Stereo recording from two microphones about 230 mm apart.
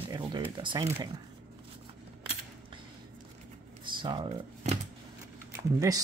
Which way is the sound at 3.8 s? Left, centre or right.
Right.